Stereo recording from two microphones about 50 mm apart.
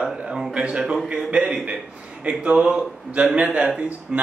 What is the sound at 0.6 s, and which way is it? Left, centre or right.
A man's voice, right.